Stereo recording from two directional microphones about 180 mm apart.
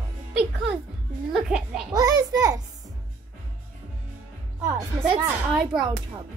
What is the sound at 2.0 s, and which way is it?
Speech, 20° right (ahead or behind).